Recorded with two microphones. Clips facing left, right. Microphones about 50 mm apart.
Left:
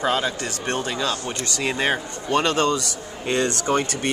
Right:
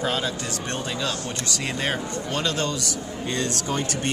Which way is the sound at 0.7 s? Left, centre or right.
Left.